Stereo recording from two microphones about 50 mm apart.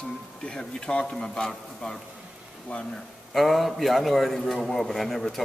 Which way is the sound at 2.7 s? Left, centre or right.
Left.